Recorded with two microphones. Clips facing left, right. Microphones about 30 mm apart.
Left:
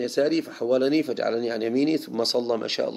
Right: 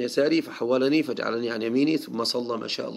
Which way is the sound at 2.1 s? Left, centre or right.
Centre.